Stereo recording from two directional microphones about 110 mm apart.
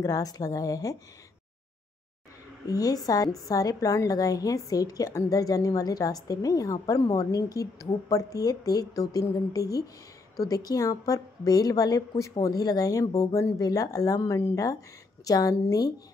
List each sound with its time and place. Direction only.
0.0 s a woman's voice: 35° left (ahead or behind)
2.6 s a woman's voice: 35° left (ahead or behind)